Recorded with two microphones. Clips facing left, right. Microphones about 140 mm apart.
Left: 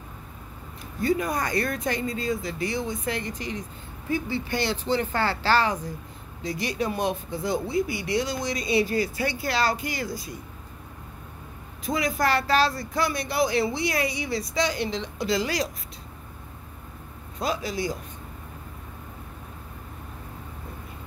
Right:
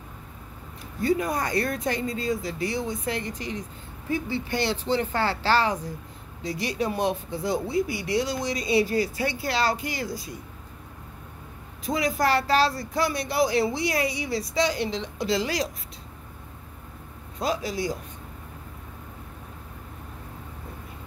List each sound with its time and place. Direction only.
1.0 s speech: 30° right (ahead or behind)
11.8 s speech: 30° right (ahead or behind)
17.4 s speech: 35° right (ahead or behind)